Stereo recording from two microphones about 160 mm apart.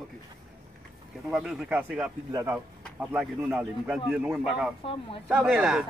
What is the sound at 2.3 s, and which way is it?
Speech, 20° right (ahead or behind).